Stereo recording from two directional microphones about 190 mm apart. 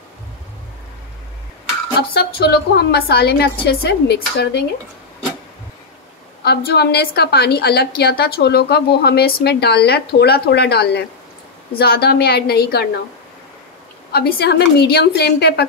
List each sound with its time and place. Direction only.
2.1 s a woman's voice: 55° left (ahead or behind)
6.4 s a woman's voice: 55° left (ahead or behind)
14.1 s a woman's voice: 60° left (ahead or behind)